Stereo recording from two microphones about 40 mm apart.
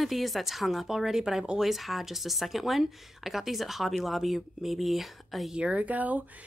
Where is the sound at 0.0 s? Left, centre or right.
Centre.